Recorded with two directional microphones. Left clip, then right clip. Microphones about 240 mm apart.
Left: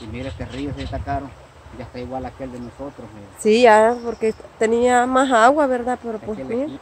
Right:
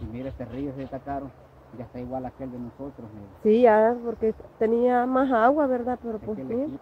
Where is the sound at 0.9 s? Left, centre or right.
Right.